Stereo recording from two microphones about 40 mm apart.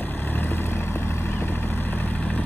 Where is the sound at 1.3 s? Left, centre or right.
Left.